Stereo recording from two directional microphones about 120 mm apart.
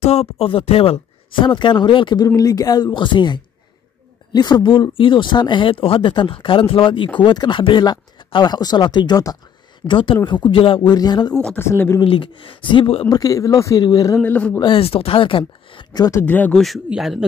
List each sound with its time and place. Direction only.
0.0 s speech: 60° left (ahead or behind); by 2.2 s 40° left (ahead or behind)
2.2 s speech: 30° left (ahead or behind)
9.8 s speech: 45° left (ahead or behind)
11.3 s speech: 10° left (ahead or behind)
11.6 s speech: 20° left (ahead or behind)
12.0 s speech: 45° left (ahead or behind)
13.1 s speech: 30° left (ahead or behind)
14.2 s speech: 15° left (ahead or behind)
14.6 s speech: 50° left (ahead or behind)
16.2 s speech: 15° left (ahead or behind)
16.5 s speech: centre (ahead or behind)